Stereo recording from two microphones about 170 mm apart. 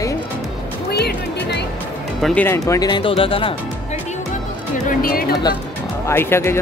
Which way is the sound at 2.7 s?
25° left (ahead or behind).